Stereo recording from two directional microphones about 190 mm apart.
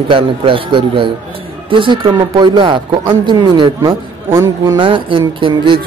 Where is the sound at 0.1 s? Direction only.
25° right (ahead or behind).